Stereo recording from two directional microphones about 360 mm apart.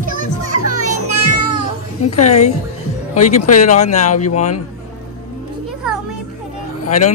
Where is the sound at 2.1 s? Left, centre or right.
Centre.